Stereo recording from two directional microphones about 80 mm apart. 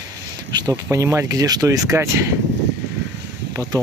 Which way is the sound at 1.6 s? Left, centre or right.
Right.